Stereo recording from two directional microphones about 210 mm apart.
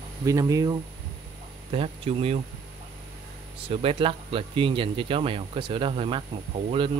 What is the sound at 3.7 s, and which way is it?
Speech, 25° right (ahead or behind).